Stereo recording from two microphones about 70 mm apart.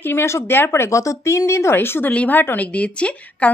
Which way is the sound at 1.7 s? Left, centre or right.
Left.